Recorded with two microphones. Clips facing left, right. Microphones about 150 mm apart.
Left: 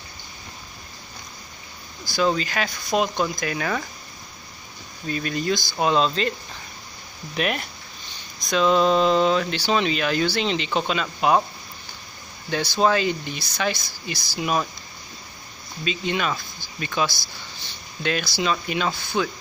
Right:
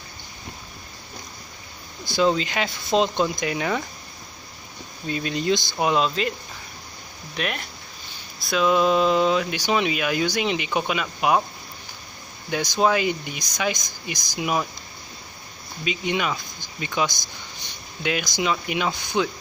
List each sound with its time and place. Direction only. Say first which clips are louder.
2.0 s speech: right 1 dB; 25° right (ahead or behind)
5.0 s speech: right 1 dB; 20° right (ahead or behind)
7.3 s speech: left 4 dB; centre (ahead or behind)
12.4 s speech: even; 15° right (ahead or behind)
15.8 s speech: even; 15° right (ahead or behind)